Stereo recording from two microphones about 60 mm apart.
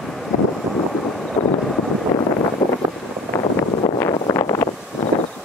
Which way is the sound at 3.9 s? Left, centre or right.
Left.